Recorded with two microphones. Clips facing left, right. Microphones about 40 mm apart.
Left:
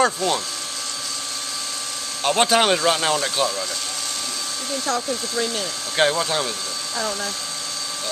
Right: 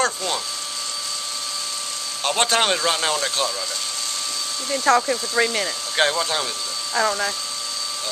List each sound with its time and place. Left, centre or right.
0.0 s speech: centre
2.2 s speech: centre
4.8 s speech: right
5.9 s speech: centre